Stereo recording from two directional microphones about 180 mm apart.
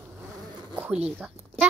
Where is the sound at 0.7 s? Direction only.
10° right (ahead or behind).